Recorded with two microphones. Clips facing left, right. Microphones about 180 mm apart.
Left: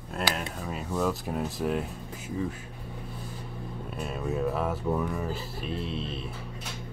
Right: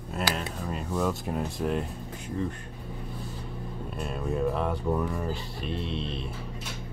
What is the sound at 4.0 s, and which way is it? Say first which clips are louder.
Speech: right 1 dB; centre (ahead or behind).